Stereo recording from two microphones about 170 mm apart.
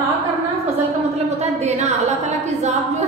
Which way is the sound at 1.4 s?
40° right (ahead or behind).